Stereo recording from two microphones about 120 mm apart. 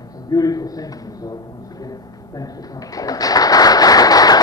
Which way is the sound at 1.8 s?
30° left (ahead or behind).